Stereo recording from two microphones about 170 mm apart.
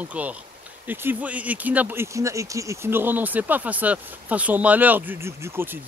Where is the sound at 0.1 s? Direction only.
10° right (ahead or behind).